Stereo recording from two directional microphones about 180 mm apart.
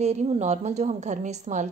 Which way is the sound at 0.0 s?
40° right (ahead or behind).